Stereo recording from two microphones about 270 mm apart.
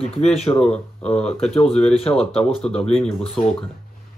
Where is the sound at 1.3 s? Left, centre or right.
Left.